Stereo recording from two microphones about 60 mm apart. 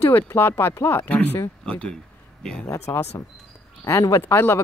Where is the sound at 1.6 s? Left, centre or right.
Centre.